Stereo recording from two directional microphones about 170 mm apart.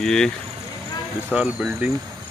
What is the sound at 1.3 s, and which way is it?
Speech, 5° right (ahead or behind).